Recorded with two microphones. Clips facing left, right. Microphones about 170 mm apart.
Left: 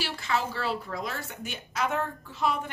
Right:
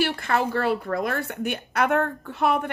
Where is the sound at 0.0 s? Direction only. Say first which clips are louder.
Right 7 dB; 55° right (ahead or behind).